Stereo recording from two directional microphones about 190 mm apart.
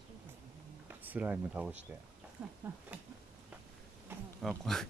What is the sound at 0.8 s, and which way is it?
Speech, 10° right (ahead or behind).